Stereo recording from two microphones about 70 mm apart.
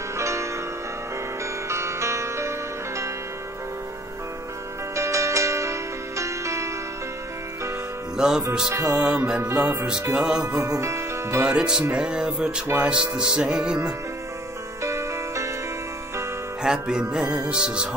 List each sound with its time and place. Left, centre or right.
0.2 s music: right
1.7 s music: right
4.9 s music: right
8.2 s music: centre
8.9 s music: centre
10.1 s music: centre
10.5 s speech: right
11.4 s music: centre
14.8 s music: right
16.6 s music: centre